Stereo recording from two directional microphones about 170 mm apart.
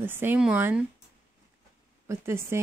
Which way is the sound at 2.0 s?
15° right (ahead or behind).